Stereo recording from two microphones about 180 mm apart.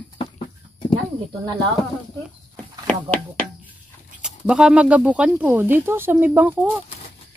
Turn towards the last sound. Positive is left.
turn(degrees=-10)  # may be behind; listen again after turning